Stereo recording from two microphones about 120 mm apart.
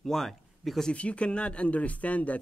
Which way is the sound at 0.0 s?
5° left (ahead or behind).